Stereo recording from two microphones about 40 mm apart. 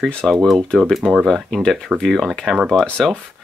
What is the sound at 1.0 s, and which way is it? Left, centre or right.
Speech, centre.